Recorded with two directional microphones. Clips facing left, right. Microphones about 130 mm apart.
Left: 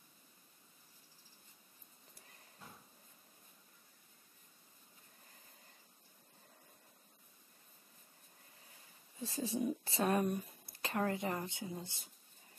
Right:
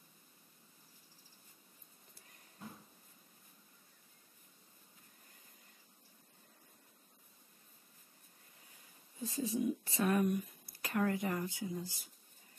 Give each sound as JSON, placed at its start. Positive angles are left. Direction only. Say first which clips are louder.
{"t": 9.2, "sound": "speech", "louder": "right 2 dB", "side_deg": 30}